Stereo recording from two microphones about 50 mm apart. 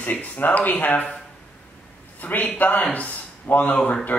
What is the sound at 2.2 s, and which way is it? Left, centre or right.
A man's voice, left.